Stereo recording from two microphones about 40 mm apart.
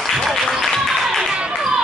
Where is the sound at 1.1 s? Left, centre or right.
Centre.